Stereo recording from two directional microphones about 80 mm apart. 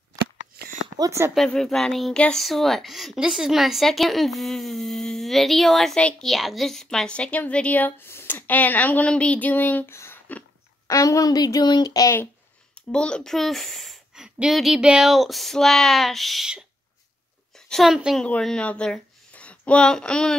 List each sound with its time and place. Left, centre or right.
1.3 s a woman's voice: centre
2.1 s speech: centre
2.4 s a woman's voice: centre; by 9.9 s left
9.9 s a sound: left
10.9 s speech: left
12.9 s a child's voice: centre
17.6 s a woman's voice: centre